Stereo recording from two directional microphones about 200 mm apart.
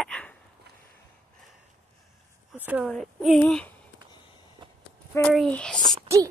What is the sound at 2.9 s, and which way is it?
Speech, centre (ahead or behind).